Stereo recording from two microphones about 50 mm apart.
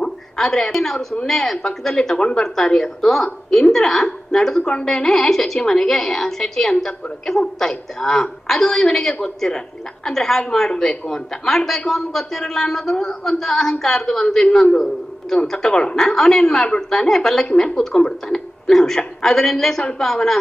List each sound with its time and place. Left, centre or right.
0.0 s a sound: centre
1.2 s a woman's voice: centre
17.5 s a woman's voice: left